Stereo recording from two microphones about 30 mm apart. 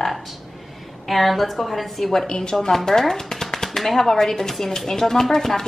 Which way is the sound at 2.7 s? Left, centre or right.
Centre.